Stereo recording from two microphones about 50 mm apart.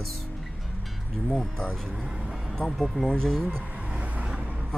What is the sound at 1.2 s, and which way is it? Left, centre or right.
Speech, centre.